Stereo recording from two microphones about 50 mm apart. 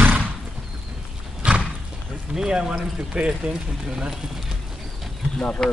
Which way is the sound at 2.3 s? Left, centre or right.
Centre.